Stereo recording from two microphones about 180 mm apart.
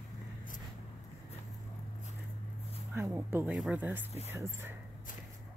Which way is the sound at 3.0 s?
15° right (ahead or behind).